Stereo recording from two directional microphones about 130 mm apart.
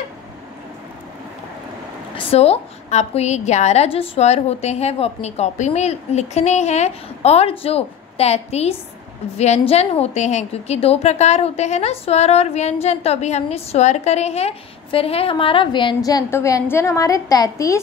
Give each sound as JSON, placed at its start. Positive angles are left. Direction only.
{"t": 2.1, "sound": "a woman's voice", "side_deg": 50}